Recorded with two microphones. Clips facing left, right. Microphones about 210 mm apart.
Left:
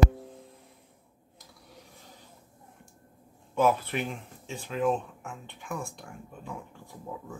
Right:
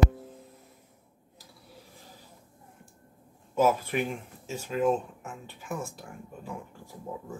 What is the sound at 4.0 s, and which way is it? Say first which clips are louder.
Speech: right 3 dB; 5° right (ahead or behind).